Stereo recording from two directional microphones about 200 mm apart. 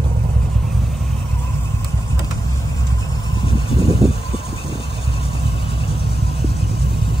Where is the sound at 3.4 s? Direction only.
25° left (ahead or behind).